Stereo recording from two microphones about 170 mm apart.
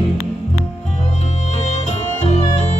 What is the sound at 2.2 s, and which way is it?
Music, 40° left (ahead or behind).